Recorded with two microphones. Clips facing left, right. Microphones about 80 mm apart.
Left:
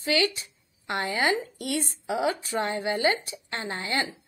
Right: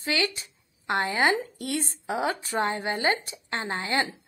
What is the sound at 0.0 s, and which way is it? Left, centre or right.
Speech, right.